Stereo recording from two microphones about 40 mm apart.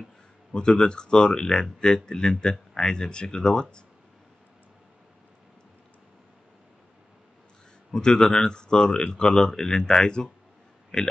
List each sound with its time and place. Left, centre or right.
0.5 s speech: centre
7.9 s speech: centre